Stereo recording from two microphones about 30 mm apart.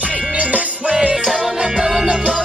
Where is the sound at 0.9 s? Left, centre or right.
Right.